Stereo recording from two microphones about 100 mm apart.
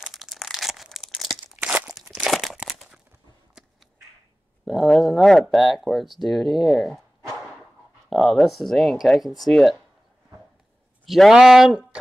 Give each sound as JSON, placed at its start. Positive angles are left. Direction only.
{"t": 0.0, "sound": "crumpling", "side_deg": 0}
{"t": 1.6, "sound": "crunch", "side_deg": -15}
{"t": 2.2, "sound": "crumpling", "side_deg": 0}
{"t": 3.6, "sound": "a sound", "side_deg": -5}
{"t": 4.6, "sound": "speech", "side_deg": 5}
{"t": 11.1, "sound": "speech", "side_deg": 0}